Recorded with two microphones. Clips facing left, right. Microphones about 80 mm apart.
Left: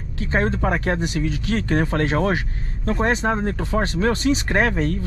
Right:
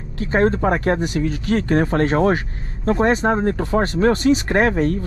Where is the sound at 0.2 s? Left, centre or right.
Right.